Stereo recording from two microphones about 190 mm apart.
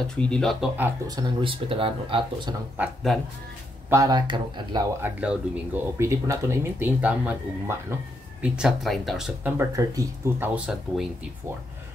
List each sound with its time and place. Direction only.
0.0 s speech: 5° left (ahead or behind)
0.7 s speech: 10° right (ahead or behind)
1.1 s speech: 25° right (ahead or behind)
2.8 s speech: centre (ahead or behind)
3.9 s speech: 20° right (ahead or behind)
5.0 s speech: 10° right (ahead or behind)
9.6 s speech: 15° right (ahead or behind)